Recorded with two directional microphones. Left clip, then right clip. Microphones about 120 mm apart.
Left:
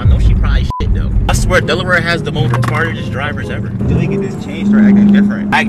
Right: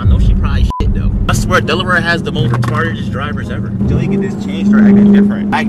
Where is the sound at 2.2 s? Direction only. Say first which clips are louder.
Left 1 dB; centre (ahead or behind).